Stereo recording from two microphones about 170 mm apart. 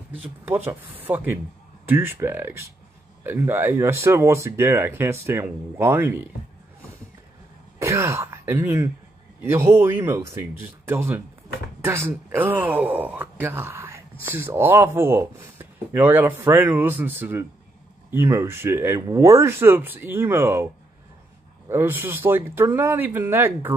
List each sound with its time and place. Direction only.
0.2 s speech: 10° right (ahead or behind)
7.8 s speech: 15° right (ahead or behind)
21.6 s speech: 15° right (ahead or behind)